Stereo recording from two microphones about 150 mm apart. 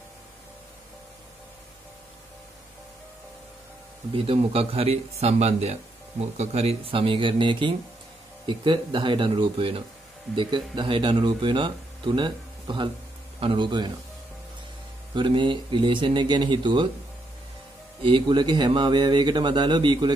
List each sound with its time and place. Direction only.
4.1 s speech: 40° right (ahead or behind)
15.1 s speech: 30° right (ahead or behind)
18.0 s speech: 30° right (ahead or behind)